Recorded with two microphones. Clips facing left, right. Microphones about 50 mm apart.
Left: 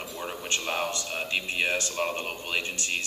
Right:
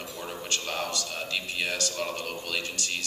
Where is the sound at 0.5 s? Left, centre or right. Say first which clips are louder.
Left 3 dB; left.